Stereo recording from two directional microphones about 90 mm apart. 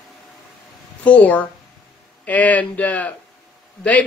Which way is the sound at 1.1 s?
15° left (ahead or behind).